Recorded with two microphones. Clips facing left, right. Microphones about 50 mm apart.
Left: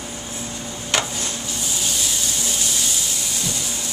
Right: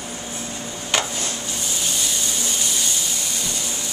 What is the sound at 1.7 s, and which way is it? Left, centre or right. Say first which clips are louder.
Vacuum cleaner: even; centre.